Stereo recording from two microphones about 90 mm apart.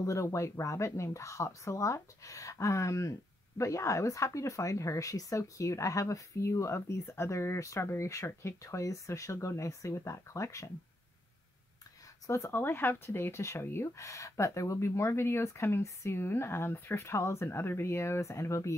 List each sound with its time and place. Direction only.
0.0 s speech: 35° left (ahead or behind)
12.3 s speech: 30° left (ahead or behind)